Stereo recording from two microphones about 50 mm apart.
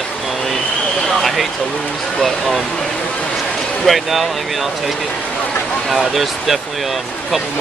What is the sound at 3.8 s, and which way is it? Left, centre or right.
Speech, centre.